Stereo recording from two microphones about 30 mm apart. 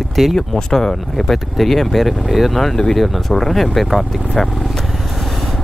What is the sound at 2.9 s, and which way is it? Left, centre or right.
Speech, centre.